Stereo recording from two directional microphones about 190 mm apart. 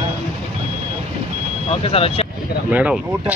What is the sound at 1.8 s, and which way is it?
Speech, 30° left (ahead or behind).